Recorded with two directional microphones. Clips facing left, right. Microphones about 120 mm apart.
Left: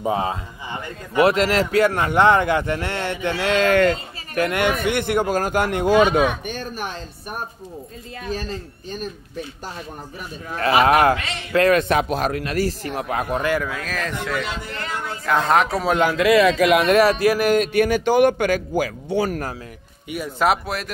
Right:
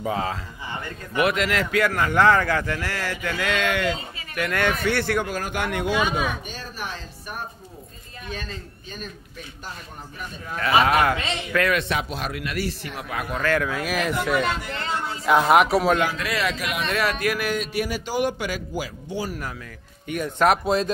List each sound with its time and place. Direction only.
0.0 s speech: 20° left (ahead or behind)
1.1 s speech: 35° left (ahead or behind)
4.5 s speech: 15° left (ahead or behind)
5.2 s a man's voice: 40° left (ahead or behind)
5.9 s speech: 55° left (ahead or behind)
8.3 s a man's voice: 35° left (ahead or behind)
10.5 s a man's voice: 35° left (ahead or behind)
13.7 s speech: 10° right (ahead or behind)
14.7 s speech: 30° right (ahead or behind)
15.2 s speech: 10° right (ahead or behind)
16.1 s speech: 90° left
17.0 s a man's voice: 35° left (ahead or behind); by 19.4 s 60° left (ahead or behind)
20.1 s speech: 5° left (ahead or behind)
20.6 s speech: 25° right (ahead or behind)